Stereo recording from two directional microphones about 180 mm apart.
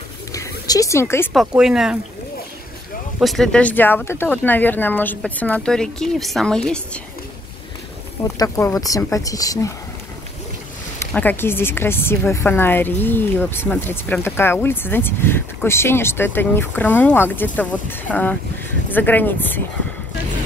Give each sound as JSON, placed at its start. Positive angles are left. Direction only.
{"t": 0.3, "sound": "a sound", "side_deg": 20}
{"t": 1.3, "sound": "speech", "side_deg": 0}
{"t": 3.2, "sound": "speech", "side_deg": 0}
{"t": 8.4, "sound": "speech", "side_deg": 15}
{"t": 11.0, "sound": "speech", "side_deg": 10}